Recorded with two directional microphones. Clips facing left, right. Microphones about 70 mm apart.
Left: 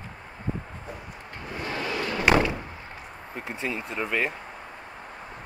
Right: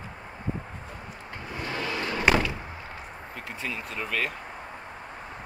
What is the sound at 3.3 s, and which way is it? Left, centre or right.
Speech, left.